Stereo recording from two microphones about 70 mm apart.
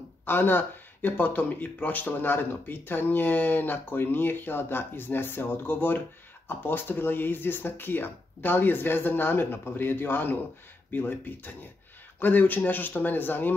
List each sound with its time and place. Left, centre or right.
0.2 s speech: left